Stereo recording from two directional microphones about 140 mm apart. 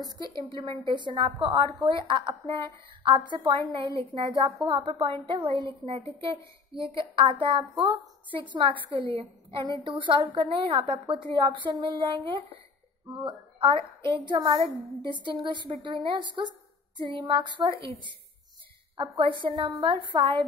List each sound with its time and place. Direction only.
0.5 s a woman's voice: 35° right (ahead or behind)
9.1 s a woman's voice: 40° right (ahead or behind)
19.1 s a woman's voice: 35° right (ahead or behind)